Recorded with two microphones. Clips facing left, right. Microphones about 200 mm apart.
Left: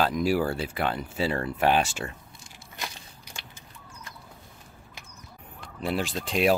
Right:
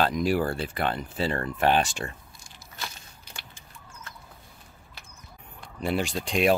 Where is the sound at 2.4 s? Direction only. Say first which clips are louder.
Left 1 dB; 15° left (ahead or behind).